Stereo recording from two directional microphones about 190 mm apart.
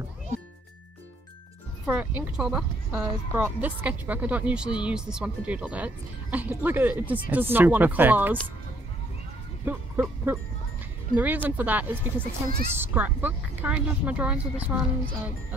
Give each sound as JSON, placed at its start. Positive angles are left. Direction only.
{"t": 1.9, "sound": "speech", "side_deg": -10}
{"t": 9.7, "sound": "a sound", "side_deg": -10}
{"t": 11.1, "sound": "speech", "side_deg": -10}